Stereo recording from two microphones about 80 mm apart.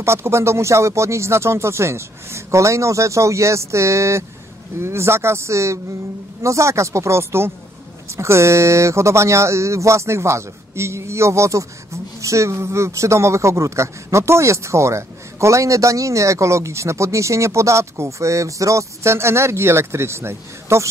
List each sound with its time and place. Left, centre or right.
0.0 s speech: right